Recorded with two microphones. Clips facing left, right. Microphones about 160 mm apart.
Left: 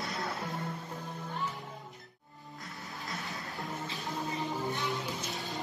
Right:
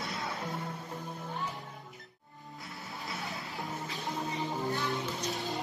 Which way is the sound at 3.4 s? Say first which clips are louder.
Even; 20° right (ahead or behind).